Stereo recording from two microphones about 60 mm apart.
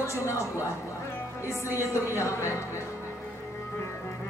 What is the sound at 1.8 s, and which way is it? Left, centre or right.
Speech, left.